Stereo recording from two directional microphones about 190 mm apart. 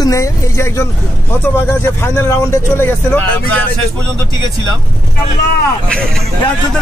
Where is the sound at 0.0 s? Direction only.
15° left (ahead or behind).